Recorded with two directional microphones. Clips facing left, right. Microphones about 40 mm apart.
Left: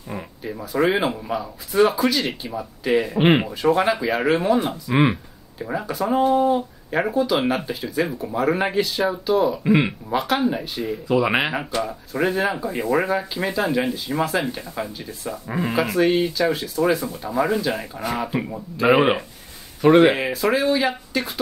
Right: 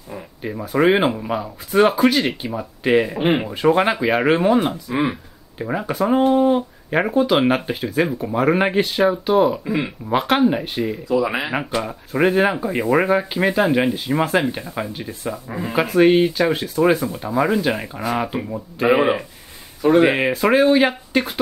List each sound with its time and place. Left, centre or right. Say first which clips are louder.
0.4 s speech: right 3 dB; right
4.8 s speech: left 2 dB; left
5.6 s speech: right 4 dB; right
9.7 s speech: left 4 dB; left
10.1 s speech: right 5 dB; right
11.1 s speech: left 2 dB; left
11.5 s speech: right 2 dB; right
15.4 s speech: left 2 dB; left
15.7 s speech: right 5 dB; right
19.8 s speech: left 1 dB; left
20.2 s speech: right 5 dB; right